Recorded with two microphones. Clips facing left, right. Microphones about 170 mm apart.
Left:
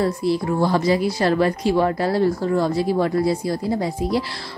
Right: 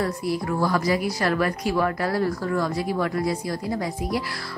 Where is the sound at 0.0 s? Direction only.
25° left (ahead or behind).